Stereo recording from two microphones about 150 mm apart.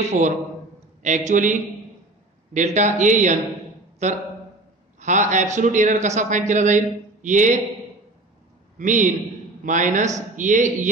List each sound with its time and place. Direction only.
0.2 s a man's voice: 55° right (ahead or behind)
8.7 s a man's voice: 55° right (ahead or behind)